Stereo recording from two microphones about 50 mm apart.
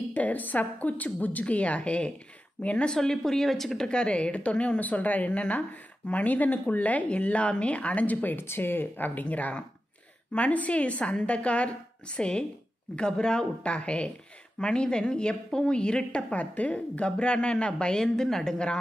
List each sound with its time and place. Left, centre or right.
0.1 s a woman's voice: left
2.9 s a woman's voice: centre; by 8.4 s left
8.4 s a woman's voice: left; by 18.8 s centre